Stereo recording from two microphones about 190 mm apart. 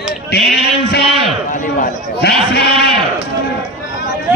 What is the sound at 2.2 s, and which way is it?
Speech, 60° left (ahead or behind).